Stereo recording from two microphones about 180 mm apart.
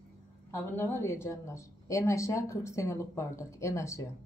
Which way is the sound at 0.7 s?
10° left (ahead or behind).